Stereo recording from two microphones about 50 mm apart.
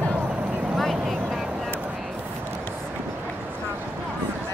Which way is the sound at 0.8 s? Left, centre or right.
Centre.